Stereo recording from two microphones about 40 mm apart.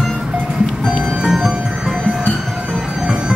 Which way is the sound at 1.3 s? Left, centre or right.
Centre.